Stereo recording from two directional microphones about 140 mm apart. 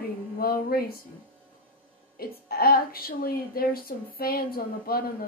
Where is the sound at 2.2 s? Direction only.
90° left.